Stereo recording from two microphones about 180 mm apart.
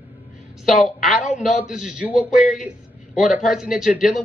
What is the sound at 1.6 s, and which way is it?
Speech, 5° right (ahead or behind).